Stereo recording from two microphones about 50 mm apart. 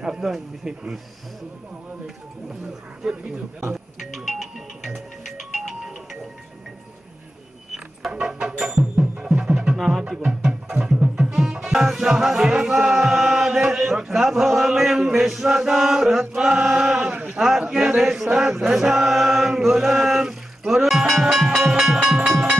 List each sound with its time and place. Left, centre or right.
0.0 s speech: centre
3.0 s speech: centre
3.7 s music: centre
8.1 s music: centre
13.1 s chant: centre
13.5 s a man's voice: centre
16.7 s a sound: centre
17.3 s speech: centre
18.3 s chant: centre
21.5 s a sound: centre
22.0 s train: centre